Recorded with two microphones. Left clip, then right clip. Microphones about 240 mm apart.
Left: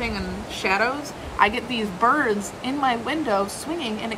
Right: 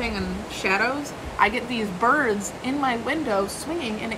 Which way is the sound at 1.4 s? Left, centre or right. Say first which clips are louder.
Left 1 dB; centre.